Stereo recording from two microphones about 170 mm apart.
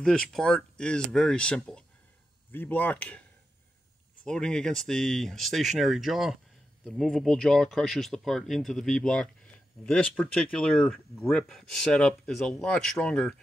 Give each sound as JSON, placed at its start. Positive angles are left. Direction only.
{"t": 0.0, "sound": "speech", "side_deg": 5}